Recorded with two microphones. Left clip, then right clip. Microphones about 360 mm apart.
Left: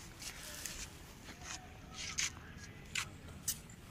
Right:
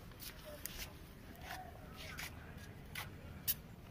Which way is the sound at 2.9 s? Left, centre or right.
Centre.